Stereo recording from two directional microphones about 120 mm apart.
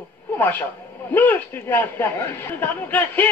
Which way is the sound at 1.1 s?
15° left (ahead or behind).